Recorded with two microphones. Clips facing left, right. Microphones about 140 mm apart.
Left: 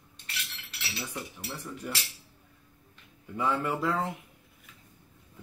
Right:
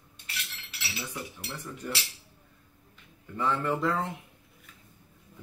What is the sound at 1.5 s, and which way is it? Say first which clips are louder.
Speech: left 1 dB; 10° left (ahead or behind).